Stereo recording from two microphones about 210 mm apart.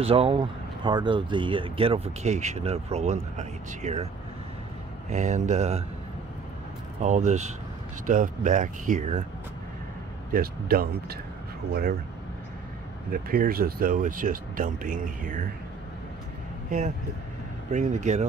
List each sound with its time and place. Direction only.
0.0 s speech: 25° right (ahead or behind)
5.1 s speech: 35° right (ahead or behind)
7.0 s speech: 35° right (ahead or behind)
10.3 s speech: 45° right (ahead or behind)
13.1 s speech: 45° right (ahead or behind)
17.6 s speech: 35° right (ahead or behind)